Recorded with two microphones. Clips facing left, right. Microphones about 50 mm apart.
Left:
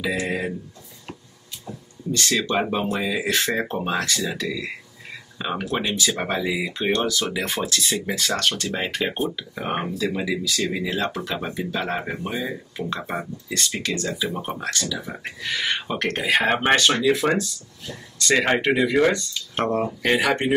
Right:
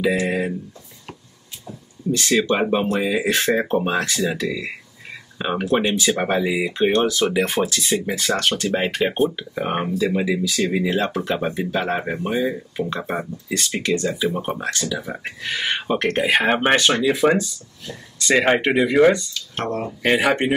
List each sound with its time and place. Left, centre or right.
2.1 s speech: centre
16.4 s speech: centre
19.3 s speech: centre
20.0 s speech: right